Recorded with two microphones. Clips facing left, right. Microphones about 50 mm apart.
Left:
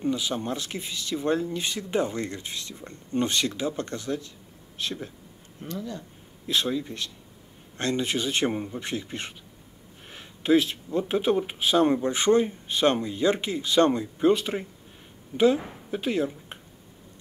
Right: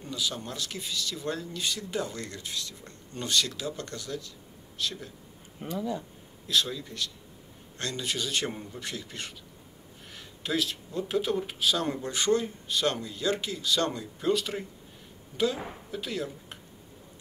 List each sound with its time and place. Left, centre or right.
0.0 s speech: left
5.6 s speech: centre
6.4 s speech: left